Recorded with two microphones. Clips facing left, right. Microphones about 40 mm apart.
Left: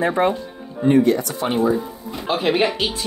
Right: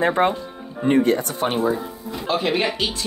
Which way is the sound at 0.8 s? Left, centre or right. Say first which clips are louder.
Left 2 dB; right.